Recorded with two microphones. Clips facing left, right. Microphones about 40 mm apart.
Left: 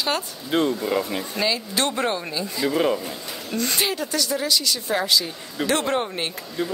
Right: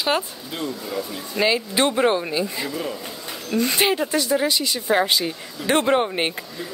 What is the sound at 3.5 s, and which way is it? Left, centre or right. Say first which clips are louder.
Speech: right 5 dB; centre.